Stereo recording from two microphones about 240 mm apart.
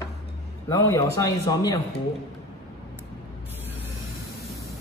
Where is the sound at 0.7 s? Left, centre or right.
Centre.